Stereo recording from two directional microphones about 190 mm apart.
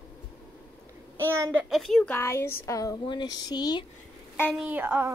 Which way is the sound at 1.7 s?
Centre (ahead or behind).